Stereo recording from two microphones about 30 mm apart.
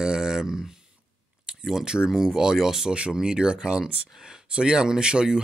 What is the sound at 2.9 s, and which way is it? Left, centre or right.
Speech, right.